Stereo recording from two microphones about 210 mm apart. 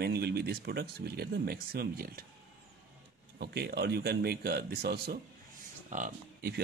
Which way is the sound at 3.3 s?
50° right (ahead or behind).